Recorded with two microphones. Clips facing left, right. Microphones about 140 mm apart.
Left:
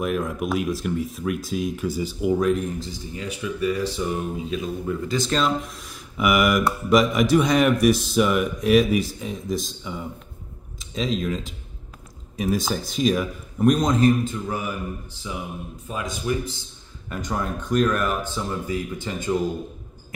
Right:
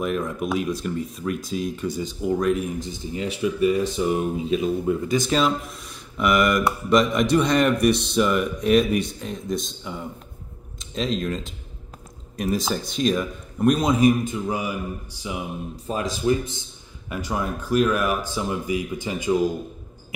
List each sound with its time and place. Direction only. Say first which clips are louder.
0.0 s speech: even; 5° left (ahead or behind)
2.8 s speech: right 4 dB; 25° right (ahead or behind)
15.7 s speech: right 5 dB; 30° right (ahead or behind)
17.1 s speech: right 1 dB; 5° right (ahead or behind)